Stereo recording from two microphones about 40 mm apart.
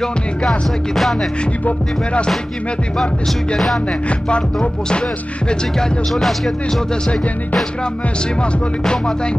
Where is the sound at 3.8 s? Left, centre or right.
Left.